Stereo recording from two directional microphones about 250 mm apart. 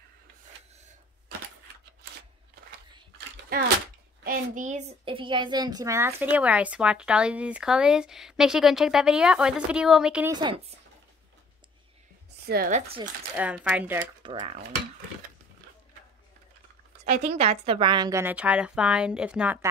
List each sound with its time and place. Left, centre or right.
3.4 s a woman's voice: right; by 10.3 s centre
10.3 s a woman's voice: centre
12.4 s speech: right
13.4 s speech: centre
14.2 s a woman's voice: right
17.0 s a woman's voice: right; by 19.7 s centre